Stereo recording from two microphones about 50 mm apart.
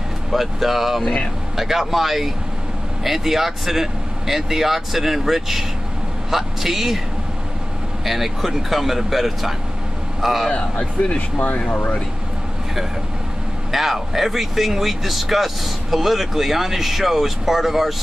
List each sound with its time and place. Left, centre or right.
0.3 s speech: centre
8.0 s speech: centre
10.5 s speech: left
13.7 s speech: centre